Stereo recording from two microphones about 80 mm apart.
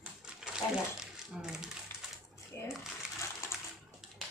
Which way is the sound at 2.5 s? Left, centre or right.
Left.